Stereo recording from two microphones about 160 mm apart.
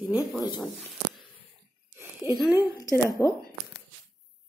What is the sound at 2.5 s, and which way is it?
Speech, 25° left (ahead or behind).